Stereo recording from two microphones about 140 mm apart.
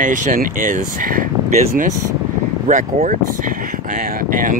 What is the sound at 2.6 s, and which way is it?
Speech, 65° right (ahead or behind).